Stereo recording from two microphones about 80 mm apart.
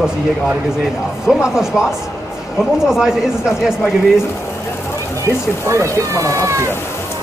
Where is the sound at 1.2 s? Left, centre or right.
Centre.